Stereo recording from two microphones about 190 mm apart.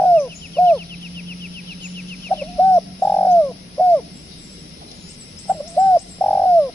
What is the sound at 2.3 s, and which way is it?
Bird, 5° left (ahead or behind).